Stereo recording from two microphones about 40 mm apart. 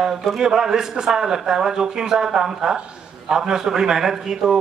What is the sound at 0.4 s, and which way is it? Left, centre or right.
A man's voice, centre.